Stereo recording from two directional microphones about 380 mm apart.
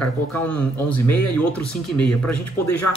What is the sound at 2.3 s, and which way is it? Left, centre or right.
Speech, left.